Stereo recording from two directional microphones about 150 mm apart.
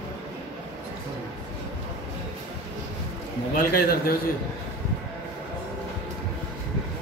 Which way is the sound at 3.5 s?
80° left.